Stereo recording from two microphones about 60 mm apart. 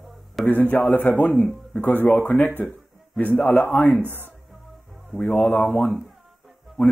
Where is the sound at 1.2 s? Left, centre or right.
Centre.